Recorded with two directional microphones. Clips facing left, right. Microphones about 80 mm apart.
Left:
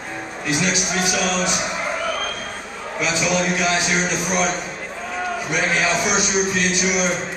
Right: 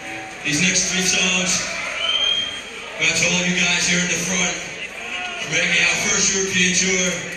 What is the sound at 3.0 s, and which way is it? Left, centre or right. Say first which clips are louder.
A man's voice: left 2 dB; left.